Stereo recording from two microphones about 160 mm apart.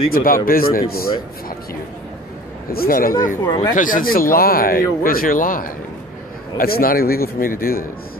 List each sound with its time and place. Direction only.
0.1 s a man's voice: 65° left (ahead or behind)
2.7 s speech: 65° left (ahead or behind)
3.4 s speech: 25° left (ahead or behind)
3.7 s speech: 55° left (ahead or behind)